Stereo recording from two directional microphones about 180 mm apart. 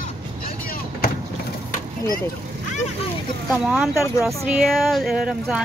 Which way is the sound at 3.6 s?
5° right (ahead or behind).